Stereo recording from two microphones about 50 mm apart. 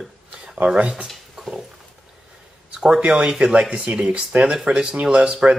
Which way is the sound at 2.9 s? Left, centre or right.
Centre.